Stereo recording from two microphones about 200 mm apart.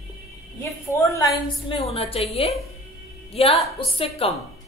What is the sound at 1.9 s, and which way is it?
A woman's voice, 30° left (ahead or behind).